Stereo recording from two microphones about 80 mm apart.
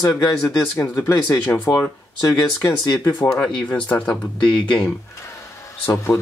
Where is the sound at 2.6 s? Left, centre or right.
Left.